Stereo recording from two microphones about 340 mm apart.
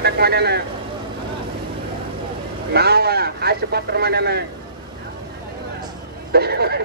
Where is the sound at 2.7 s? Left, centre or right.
Right.